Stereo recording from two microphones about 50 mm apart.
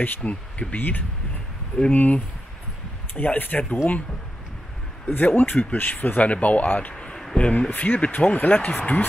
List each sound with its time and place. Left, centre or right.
0.2 s speech: left
5.0 s speech: left